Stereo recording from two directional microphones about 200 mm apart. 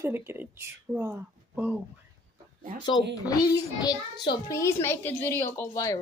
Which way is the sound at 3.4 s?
20° left (ahead or behind).